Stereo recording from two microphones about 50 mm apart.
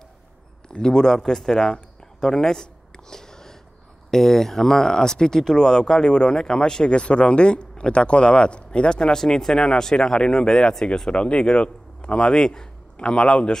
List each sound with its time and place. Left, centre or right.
0.7 s speech: centre
11.1 s speech: left